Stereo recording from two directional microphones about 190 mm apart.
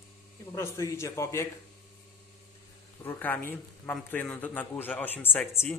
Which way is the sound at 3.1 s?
10° left (ahead or behind).